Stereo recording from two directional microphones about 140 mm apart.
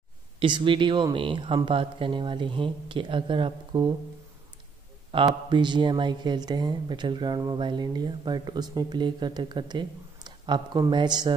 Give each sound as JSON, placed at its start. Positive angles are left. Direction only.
{"t": 0.4, "sound": "speech", "side_deg": -35}
{"t": 5.1, "sound": "speech", "side_deg": -35}